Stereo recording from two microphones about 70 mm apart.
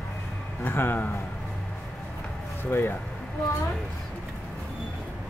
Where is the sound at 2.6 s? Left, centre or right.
Left.